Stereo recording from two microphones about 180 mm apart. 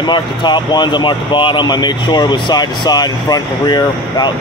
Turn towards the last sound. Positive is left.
turn(degrees=25)  # may be behind; listen again after turning